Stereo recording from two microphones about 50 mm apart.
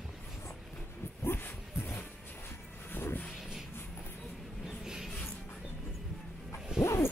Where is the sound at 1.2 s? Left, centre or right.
Left.